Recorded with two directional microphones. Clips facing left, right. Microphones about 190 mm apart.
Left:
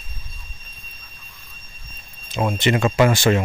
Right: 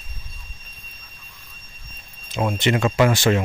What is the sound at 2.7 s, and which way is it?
Speech, 30° left (ahead or behind).